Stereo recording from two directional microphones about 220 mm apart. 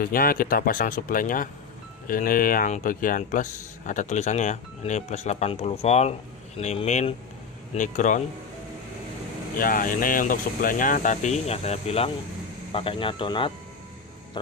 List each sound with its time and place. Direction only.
0.0 s speech: 40° left (ahead or behind)
9.6 s speech: 40° left (ahead or behind); by 14.5 s 20° left (ahead or behind)